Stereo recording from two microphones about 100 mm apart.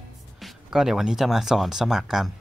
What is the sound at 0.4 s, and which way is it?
Speech, centre (ahead or behind).